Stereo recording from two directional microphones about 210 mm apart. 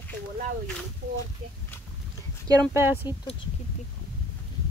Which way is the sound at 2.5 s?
15° right (ahead or behind).